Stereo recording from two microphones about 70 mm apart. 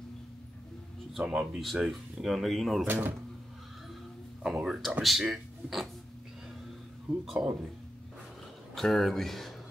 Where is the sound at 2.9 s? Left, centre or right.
Right.